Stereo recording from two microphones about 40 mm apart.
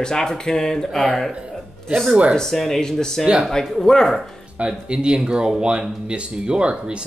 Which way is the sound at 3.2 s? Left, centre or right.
Right.